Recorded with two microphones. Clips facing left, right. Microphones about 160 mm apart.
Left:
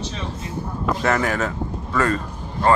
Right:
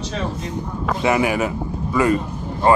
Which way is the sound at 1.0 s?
10° right (ahead or behind).